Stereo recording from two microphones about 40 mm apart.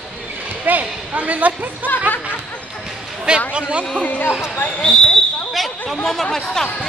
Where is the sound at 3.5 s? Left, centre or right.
Right.